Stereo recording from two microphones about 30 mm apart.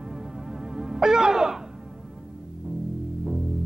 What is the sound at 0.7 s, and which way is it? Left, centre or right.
Music, right.